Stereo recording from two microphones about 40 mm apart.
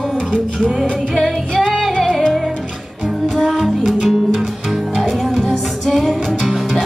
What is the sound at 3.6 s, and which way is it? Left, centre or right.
Music, centre.